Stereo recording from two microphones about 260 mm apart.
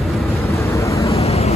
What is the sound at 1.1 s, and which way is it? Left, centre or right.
Vehicle, left.